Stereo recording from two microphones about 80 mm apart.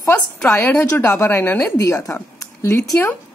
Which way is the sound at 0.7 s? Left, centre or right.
Left.